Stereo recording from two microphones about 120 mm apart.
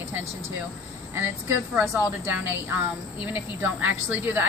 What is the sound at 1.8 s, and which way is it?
Speech, 15° right (ahead or behind).